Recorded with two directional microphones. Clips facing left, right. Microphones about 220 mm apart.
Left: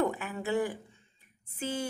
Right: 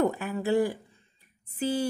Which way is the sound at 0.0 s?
40° right (ahead or behind).